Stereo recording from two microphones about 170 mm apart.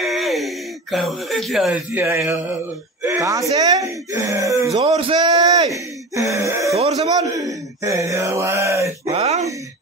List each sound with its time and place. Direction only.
0.0 s a sound: centre (ahead or behind)
0.9 s speech: centre (ahead or behind)
2.0 s mantra: 15° right (ahead or behind)
3.0 s a sound: 15° right (ahead or behind)
3.5 s speech: 20° right (ahead or behind)
4.8 s speech: 35° right (ahead or behind)
6.1 s speech: 20° right (ahead or behind)
9.1 s speech: 40° right (ahead or behind)